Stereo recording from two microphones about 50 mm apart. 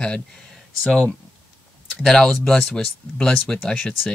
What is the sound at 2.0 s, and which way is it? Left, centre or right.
Speech, centre.